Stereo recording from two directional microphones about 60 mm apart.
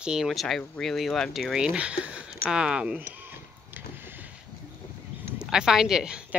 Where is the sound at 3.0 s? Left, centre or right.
Right.